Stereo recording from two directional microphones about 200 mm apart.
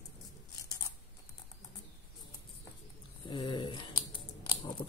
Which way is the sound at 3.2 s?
25° left (ahead or behind).